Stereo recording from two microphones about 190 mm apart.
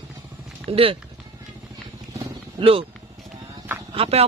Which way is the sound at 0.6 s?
30° right (ahead or behind).